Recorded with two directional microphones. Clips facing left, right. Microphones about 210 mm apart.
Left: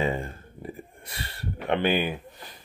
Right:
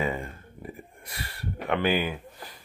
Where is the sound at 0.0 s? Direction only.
25° left (ahead or behind).